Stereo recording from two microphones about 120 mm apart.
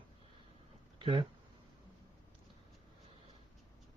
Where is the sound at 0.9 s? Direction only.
45° right (ahead or behind).